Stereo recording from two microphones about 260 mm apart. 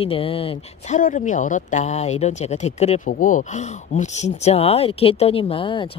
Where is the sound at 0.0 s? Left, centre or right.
Left.